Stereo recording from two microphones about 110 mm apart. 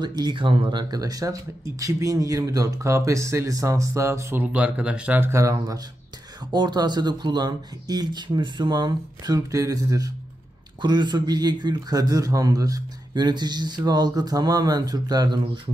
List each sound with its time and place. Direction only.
0.0 s speech: 40° right (ahead or behind); by 5.3 s 15° right (ahead or behind)
5.3 s a man's voice: 30° right (ahead or behind); by 15.7 s 45° right (ahead or behind)